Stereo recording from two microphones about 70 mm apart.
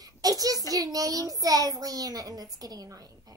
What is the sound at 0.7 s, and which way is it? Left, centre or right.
A child's voice, right.